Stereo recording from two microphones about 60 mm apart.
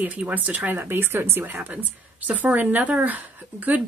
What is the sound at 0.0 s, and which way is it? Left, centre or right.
Speech, right.